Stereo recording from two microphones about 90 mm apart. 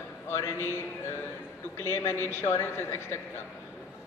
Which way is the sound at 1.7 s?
30° left (ahead or behind).